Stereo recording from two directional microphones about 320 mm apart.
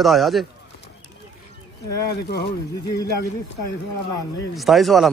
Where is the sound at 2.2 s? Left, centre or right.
Left.